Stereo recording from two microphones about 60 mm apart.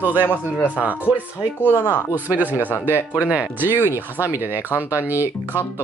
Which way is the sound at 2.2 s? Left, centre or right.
Right.